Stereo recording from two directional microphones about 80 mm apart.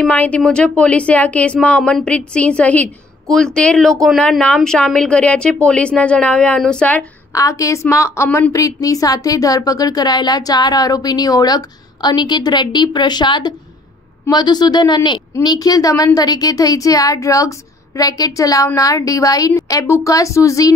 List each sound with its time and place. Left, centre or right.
0.1 s speech: centre
3.3 s speech: centre
7.3 s a woman's voice: left